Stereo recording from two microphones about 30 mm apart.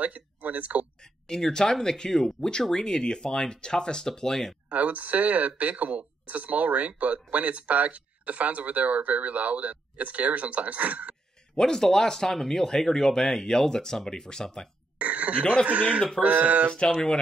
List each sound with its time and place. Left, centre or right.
0.0 s speech: right
1.0 s speech: centre
4.1 s speech: centre
4.6 s speech: right
11.5 s speech: centre
15.0 s speech: right
16.2 s speech: right